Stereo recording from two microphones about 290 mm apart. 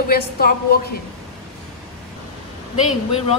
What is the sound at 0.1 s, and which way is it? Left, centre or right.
Speech, left.